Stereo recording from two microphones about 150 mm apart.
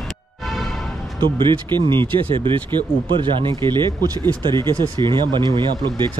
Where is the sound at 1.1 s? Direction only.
30° right (ahead or behind).